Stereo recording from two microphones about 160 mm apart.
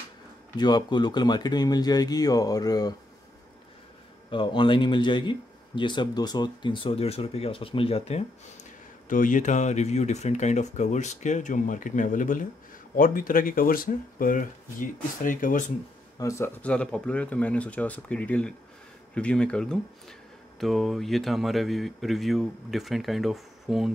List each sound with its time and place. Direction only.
0.6 s speech: 25° left (ahead or behind)
4.3 s speech: 30° left (ahead or behind)
9.1 s speech: 55° left (ahead or behind)
16.2 s speech: 20° left (ahead or behind); by 23.9 s centre (ahead or behind)